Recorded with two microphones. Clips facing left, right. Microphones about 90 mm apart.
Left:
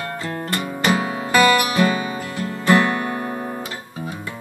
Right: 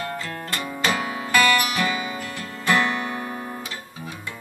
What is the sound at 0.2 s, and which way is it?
Music, 25° left (ahead or behind).